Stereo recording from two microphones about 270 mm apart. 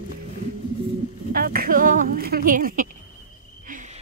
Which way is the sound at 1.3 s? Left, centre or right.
Right.